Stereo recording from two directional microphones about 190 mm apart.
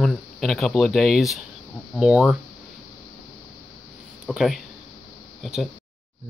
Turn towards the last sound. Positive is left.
turn(degrees=0)  # may be behind; listen again after turning